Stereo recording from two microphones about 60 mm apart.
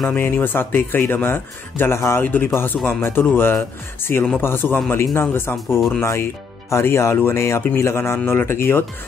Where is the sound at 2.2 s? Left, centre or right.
Left.